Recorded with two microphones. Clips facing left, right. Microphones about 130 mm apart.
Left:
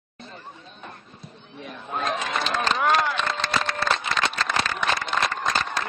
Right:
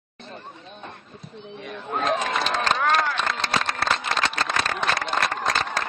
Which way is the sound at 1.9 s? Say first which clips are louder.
Right 3 dB; 40° right (ahead or behind).